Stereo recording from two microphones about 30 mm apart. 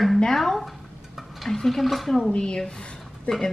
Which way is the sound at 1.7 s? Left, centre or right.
Centre.